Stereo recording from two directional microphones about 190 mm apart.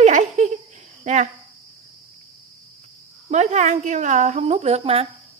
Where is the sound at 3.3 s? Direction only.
40° right (ahead or behind).